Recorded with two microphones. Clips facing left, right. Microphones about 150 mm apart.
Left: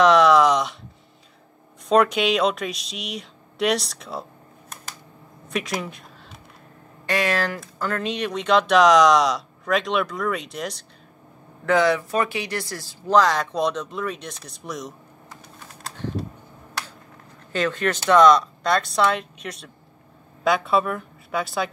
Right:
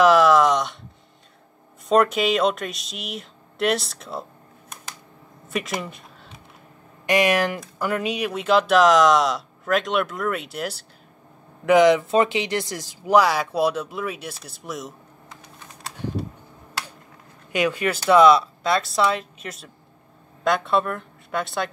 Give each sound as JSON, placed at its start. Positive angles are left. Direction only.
{"t": 0.0, "sound": "a sound", "side_deg": -5}
{"t": 1.9, "sound": "speech", "side_deg": 0}
{"t": 5.5, "sound": "speech", "side_deg": 0}
{"t": 7.1, "sound": "speech", "side_deg": -15}
{"t": 11.6, "sound": "speech", "side_deg": -15}
{"t": 17.5, "sound": "a woman's voice", "side_deg": -10}